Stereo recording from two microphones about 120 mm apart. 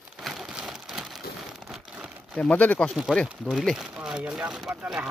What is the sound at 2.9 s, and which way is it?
Speech, centre (ahead or behind).